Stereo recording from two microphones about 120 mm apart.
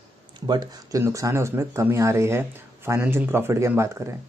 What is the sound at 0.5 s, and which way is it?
A man's voice, 30° right (ahead or behind).